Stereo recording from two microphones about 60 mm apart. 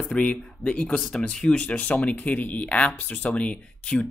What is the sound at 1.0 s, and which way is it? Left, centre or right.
Speech, centre.